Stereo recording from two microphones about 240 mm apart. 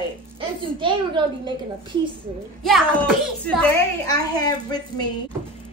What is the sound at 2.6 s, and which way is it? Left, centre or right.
Speech, centre.